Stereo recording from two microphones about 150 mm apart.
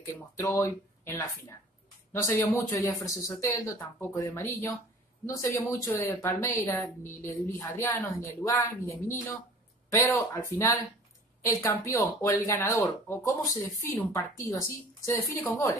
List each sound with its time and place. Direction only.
0.1 s speech: 20° left (ahead or behind)
2.2 s speech: 20° left (ahead or behind)
11.4 s speech: 20° left (ahead or behind)